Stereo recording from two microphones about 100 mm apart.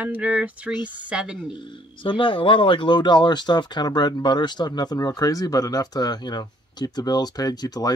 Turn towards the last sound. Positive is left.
turn(degrees=40)  # may be behind; listen again after turning